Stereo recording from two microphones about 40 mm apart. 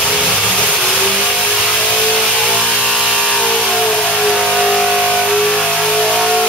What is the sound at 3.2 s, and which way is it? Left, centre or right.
Vehicle, centre.